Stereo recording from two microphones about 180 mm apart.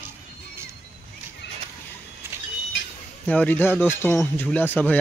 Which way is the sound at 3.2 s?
10° left (ahead or behind).